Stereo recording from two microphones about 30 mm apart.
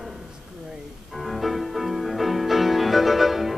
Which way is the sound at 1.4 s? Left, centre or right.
Centre.